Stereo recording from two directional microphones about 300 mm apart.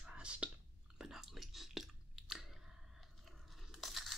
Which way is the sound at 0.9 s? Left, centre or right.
Centre.